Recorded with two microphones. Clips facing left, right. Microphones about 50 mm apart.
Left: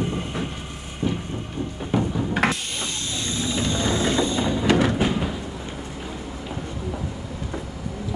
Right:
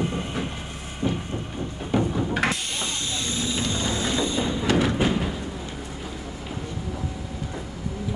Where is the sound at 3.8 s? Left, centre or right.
Left.